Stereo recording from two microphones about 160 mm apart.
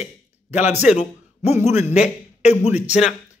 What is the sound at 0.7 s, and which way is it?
A man's voice, 45° left (ahead or behind).